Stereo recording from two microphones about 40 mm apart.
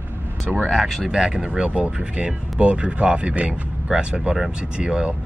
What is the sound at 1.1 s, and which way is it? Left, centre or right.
Speech, centre.